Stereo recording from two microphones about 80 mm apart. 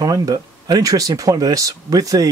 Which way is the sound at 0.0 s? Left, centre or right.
Right.